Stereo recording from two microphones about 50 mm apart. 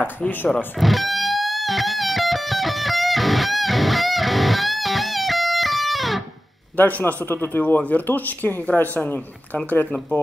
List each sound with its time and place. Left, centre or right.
0.7 s music: centre
6.8 s speech: left